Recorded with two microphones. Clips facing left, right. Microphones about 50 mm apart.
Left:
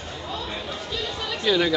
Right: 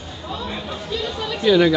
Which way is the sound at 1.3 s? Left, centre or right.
Centre.